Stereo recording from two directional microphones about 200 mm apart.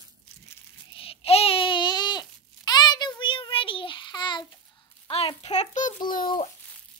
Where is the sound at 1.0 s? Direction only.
30° left (ahead or behind).